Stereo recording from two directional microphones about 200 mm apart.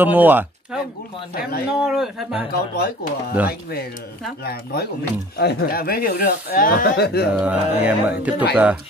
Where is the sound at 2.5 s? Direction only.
50° left (ahead or behind).